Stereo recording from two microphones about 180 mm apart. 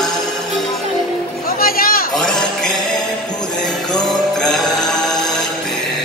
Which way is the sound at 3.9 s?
5° left (ahead or behind).